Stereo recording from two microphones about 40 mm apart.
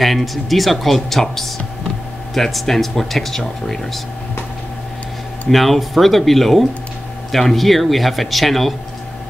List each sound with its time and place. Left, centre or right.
0.0 s speech: centre
5.5 s speech: centre